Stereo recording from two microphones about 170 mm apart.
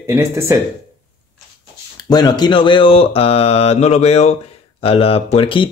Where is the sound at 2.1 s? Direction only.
25° left (ahead or behind).